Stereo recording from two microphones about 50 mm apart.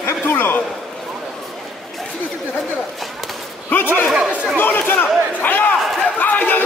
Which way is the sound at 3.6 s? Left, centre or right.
Left.